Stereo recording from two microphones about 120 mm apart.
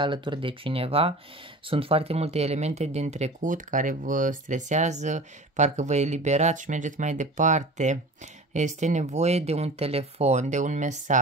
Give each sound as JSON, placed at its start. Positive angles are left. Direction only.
{"t": 0.0, "sound": "speech", "side_deg": -45}